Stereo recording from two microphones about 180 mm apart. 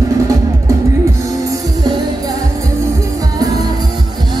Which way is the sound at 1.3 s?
20° right (ahead or behind).